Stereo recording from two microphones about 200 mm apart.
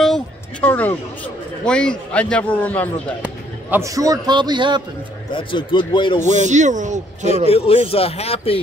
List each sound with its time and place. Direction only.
0.0 s a sound: 5° left (ahead or behind)
1.6 s a man's voice: 5° left (ahead or behind)
3.7 s a man's voice: 15° right (ahead or behind)
5.3 s speech: 25° left (ahead or behind)
6.3 s speech: 35° right (ahead or behind)
7.4 s speech: 30° left (ahead or behind)